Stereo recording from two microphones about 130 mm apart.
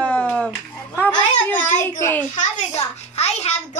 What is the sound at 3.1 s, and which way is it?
Speech, 55° left (ahead or behind).